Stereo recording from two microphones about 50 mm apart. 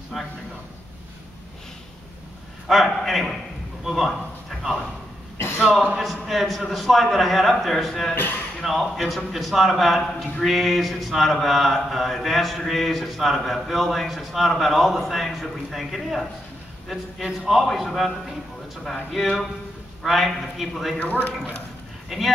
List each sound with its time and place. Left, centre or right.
0.1 s a sound: centre
2.7 s mantra: centre
3.8 s a sound: centre
5.9 s mantra: centre
8.1 s speech: left
8.5 s mantra: centre
19.1 s mantra: centre
21.0 s speech: left
22.1 s mantra: centre